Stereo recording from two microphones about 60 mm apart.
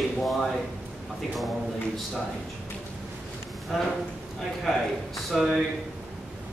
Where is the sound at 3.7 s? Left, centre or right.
Centre.